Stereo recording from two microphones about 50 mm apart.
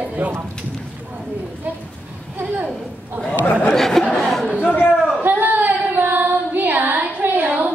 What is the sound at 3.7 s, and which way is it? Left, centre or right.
Chatter, centre.